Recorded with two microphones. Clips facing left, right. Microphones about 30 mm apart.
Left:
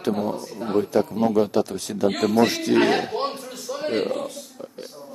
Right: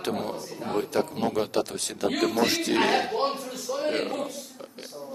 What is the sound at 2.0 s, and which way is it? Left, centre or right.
Speech, left.